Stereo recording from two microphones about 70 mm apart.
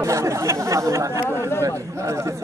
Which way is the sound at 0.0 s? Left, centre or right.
Right.